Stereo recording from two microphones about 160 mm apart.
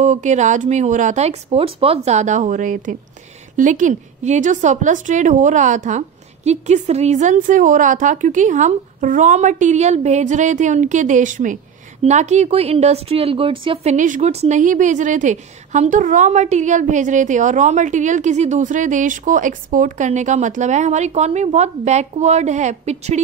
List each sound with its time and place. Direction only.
0.0 s a woman's voice: 50° right (ahead or behind)
13.9 s a woman's voice: 55° right (ahead or behind)